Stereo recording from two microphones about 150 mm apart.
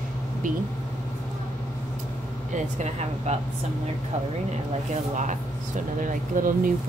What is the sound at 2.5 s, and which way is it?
Speech, 50° right (ahead or behind).